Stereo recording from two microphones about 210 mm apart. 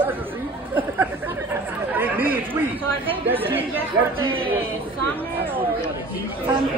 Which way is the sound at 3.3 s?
10° right (ahead or behind).